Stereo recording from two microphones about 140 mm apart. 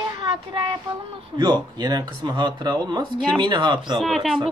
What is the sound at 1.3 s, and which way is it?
Speech, 30° right (ahead or behind).